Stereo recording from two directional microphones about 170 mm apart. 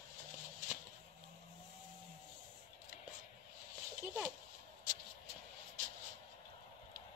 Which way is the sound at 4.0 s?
5° right (ahead or behind).